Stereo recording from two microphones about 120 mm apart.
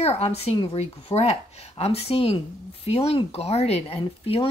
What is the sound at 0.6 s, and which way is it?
Speech, 45° left (ahead or behind).